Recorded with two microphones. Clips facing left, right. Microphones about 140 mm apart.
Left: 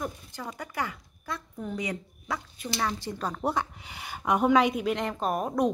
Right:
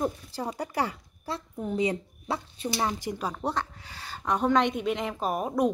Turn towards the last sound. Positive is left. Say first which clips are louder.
# even
turn(degrees=-5)  # may be behind; listen again after turning